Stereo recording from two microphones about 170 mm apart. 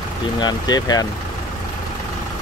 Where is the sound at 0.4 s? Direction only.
25° left (ahead or behind).